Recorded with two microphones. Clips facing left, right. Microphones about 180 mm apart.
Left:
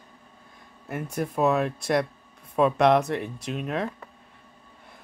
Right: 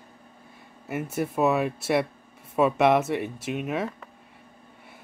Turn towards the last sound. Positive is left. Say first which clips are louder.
# right 1 dB
turn(degrees=-5)  # may be behind; listen again after turning